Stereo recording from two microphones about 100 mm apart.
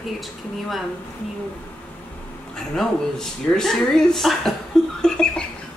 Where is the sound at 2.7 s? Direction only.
5° left (ahead or behind).